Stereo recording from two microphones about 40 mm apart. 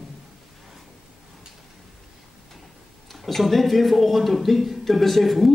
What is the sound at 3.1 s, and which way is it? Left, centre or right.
A man's voice, centre.